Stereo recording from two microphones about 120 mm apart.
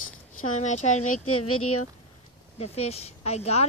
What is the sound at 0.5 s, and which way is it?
Speech, 70° left (ahead or behind).